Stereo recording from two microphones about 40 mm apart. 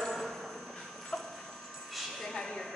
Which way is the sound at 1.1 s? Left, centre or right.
Centre.